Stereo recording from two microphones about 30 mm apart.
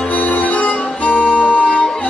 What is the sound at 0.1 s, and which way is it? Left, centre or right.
Music, left.